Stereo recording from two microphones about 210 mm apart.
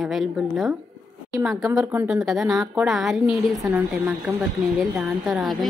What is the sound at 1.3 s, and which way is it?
A woman's voice, 15° right (ahead or behind).